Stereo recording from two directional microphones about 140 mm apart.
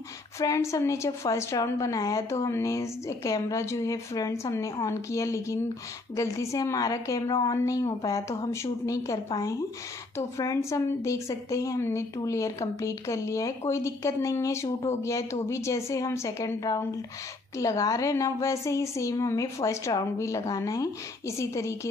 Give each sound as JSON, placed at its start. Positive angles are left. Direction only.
{"t": 0.4, "sound": "a woman's voice", "side_deg": 20}